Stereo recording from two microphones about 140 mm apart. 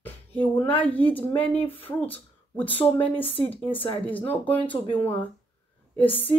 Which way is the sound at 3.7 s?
40° left (ahead or behind).